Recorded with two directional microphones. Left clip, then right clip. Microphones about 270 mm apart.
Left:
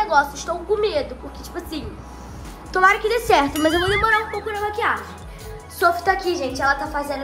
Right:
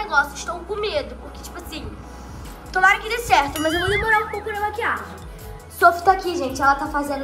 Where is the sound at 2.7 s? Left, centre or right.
Left.